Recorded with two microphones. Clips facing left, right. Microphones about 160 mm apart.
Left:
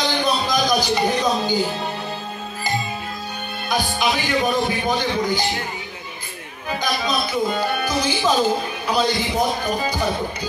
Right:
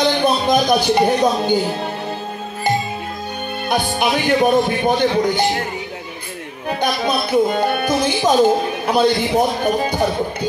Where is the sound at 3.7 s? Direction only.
55° right (ahead or behind).